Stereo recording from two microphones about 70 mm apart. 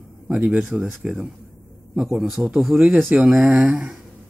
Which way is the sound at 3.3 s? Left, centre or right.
Centre.